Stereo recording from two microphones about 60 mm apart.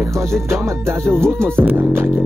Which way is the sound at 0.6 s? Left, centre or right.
Right.